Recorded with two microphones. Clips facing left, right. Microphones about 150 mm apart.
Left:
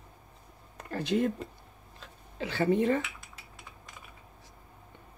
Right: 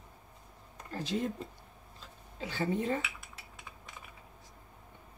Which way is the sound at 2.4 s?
75° left (ahead or behind).